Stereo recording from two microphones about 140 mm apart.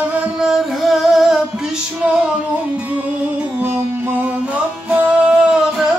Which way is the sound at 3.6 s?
15° right (ahead or behind).